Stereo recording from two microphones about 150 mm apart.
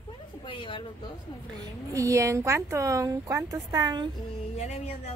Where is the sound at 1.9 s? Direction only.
20° right (ahead or behind).